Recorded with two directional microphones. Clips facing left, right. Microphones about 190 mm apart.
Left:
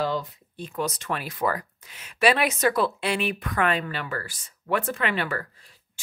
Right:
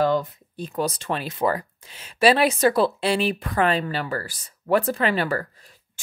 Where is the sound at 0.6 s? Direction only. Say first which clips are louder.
Right 3 dB; 35° right (ahead or behind).